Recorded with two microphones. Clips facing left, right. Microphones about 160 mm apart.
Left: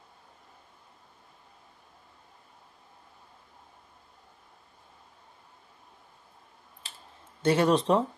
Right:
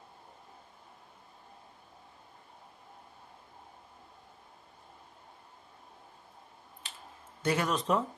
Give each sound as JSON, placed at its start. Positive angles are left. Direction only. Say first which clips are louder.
{"t": 6.8, "sound": "clicking", "louder": "even", "side_deg": 35}
{"t": 7.4, "sound": "speech", "louder": "left 7 dB", "side_deg": 30}